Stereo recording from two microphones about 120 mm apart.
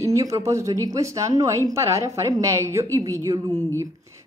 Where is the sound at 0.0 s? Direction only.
30° right (ahead or behind).